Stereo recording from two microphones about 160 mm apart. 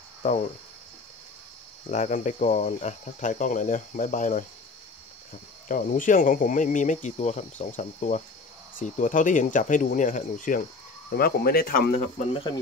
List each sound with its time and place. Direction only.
0.2 s speech: 40° left (ahead or behind)
1.9 s speech: 45° left (ahead or behind)
5.7 s speech: 55° left (ahead or behind)
11.1 s speech: 70° left (ahead or behind); by 12.3 s 55° left (ahead or behind)